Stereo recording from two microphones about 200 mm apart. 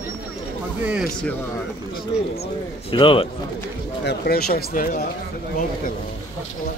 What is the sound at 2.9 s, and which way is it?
Speech, 25° left (ahead or behind).